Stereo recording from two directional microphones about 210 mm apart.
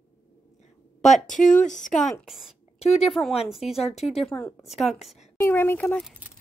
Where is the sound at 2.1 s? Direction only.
Centre (ahead or behind).